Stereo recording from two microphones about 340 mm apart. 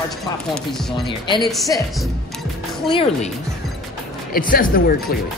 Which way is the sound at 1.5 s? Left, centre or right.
Centre.